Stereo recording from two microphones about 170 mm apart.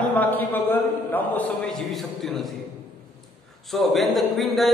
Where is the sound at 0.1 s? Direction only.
10° left (ahead or behind).